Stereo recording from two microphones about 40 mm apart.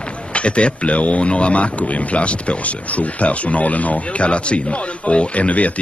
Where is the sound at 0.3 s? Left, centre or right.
Left.